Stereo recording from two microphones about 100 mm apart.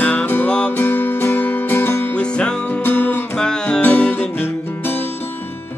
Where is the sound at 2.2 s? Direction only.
10° left (ahead or behind).